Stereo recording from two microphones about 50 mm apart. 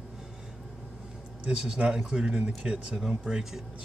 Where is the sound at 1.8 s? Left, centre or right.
Centre.